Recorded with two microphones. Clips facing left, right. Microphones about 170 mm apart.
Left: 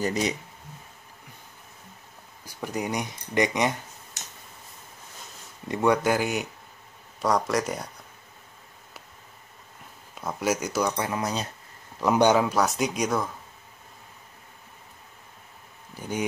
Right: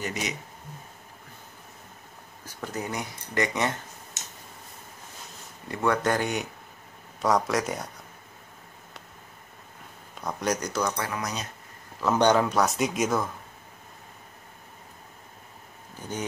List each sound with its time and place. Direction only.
0.0 s speech: 35° left (ahead or behind)
2.4 s speech: 10° left (ahead or behind)
4.2 s tick-tock: 20° right (ahead or behind)
5.7 s speech: 15° left (ahead or behind); by 7.9 s centre (ahead or behind)
10.2 s speech: 5° left (ahead or behind); by 11.4 s 30° left (ahead or behind)
12.0 s speech: 10° left (ahead or behind)
16.0 s speech: 10° left (ahead or behind)